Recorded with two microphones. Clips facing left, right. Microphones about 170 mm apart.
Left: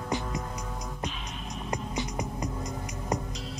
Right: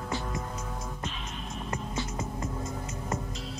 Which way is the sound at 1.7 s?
15° left (ahead or behind).